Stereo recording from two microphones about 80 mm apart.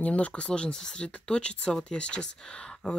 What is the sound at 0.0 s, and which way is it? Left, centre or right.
Speech, centre.